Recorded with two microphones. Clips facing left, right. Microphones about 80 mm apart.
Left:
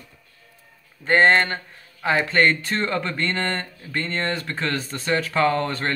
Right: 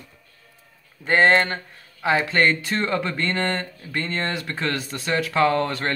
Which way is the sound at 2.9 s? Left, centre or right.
Centre.